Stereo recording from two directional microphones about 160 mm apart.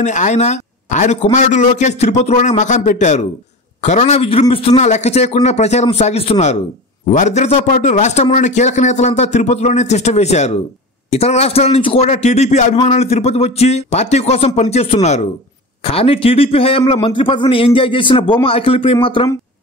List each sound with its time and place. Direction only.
0.0 s a man's voice: 50° left (ahead or behind); by 19.2 s 35° left (ahead or behind)